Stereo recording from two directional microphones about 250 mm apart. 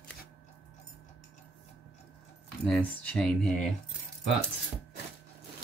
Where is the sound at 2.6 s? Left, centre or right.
Centre.